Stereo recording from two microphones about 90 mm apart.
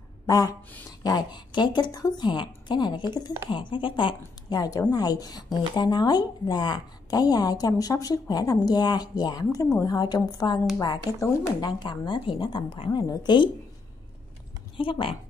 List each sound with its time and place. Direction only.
0.3 s speech: 40° left (ahead or behind)
1.0 s a woman's voice: 50° left (ahead or behind)
4.6 s a woman's voice: 40° left (ahead or behind); by 12.9 s 80° left
12.9 s a woman's voice: 55° left (ahead or behind)
14.8 s speech: 75° left (ahead or behind)